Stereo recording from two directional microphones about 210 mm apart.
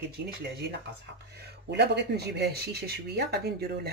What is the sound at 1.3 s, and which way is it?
Speech, 50° right (ahead or behind).